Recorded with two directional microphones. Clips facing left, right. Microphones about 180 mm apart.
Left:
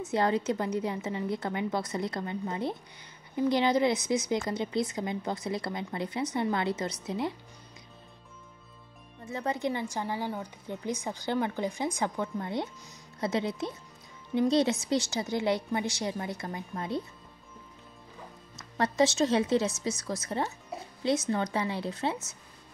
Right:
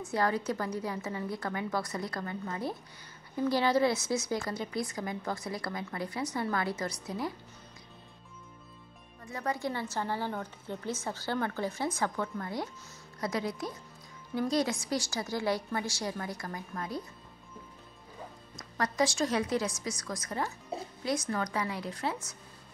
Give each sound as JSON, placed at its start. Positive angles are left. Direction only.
{"t": 0.0, "sound": "a woman's voice", "side_deg": 20}
{"t": 9.2, "sound": "a woman's voice", "side_deg": 20}
{"t": 18.8, "sound": "a woman's voice", "side_deg": 25}